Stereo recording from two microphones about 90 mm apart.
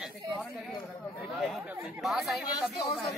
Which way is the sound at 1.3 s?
Centre (ahead or behind).